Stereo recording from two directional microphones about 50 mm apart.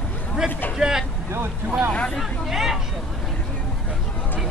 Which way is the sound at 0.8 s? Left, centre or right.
Centre.